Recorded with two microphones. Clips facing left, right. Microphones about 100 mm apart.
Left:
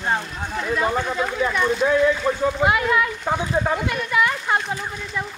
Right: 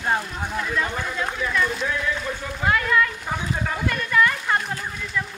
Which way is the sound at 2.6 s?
15° left (ahead or behind).